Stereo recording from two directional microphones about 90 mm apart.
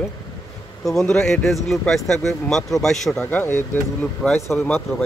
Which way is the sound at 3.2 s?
20° left (ahead or behind).